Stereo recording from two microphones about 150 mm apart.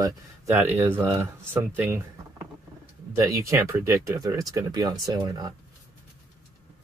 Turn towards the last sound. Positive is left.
turn(degrees=-25)  # may be behind; listen again after turning